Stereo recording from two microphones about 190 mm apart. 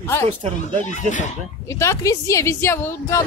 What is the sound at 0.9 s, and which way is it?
Speech, 40° left (ahead or behind).